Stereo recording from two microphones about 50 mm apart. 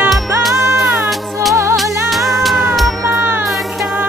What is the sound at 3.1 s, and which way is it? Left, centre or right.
Music, right.